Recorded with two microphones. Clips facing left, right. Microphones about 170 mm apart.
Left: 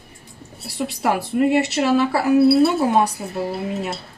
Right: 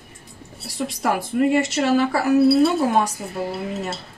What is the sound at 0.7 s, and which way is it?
Speech, 10° left (ahead or behind).